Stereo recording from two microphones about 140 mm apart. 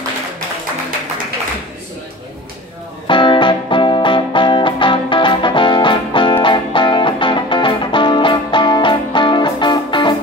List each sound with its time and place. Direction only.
3.1 s music: 35° left (ahead or behind)